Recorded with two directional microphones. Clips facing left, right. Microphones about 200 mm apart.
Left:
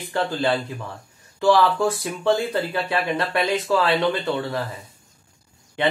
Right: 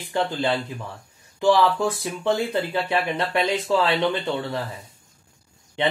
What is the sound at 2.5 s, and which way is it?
Speech, 20° right (ahead or behind).